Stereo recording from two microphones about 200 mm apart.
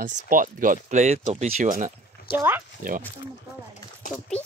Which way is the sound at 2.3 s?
10° right (ahead or behind).